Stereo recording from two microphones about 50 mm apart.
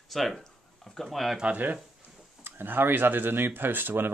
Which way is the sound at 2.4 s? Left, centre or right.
Right.